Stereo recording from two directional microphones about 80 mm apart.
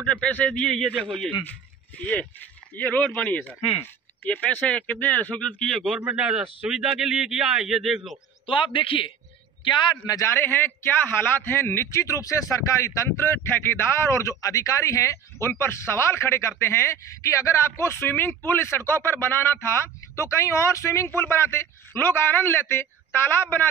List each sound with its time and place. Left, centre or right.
0.0 s a man's voice: centre
2.0 s a man's voice: left
6.0 s a man's voice: centre
8.5 s a man's voice: left
10.2 s a man's voice: left